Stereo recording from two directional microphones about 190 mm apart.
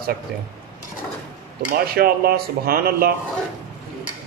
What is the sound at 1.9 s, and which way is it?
A man's voice, 55° right (ahead or behind).